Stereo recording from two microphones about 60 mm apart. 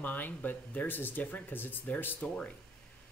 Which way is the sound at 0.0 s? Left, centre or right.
Left.